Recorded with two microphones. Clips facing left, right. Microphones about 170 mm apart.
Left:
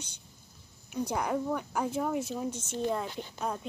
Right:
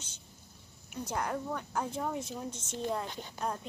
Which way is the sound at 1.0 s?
10° left (ahead or behind).